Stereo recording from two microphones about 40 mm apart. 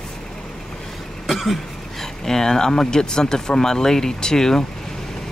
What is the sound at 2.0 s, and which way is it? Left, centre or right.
Speech, centre.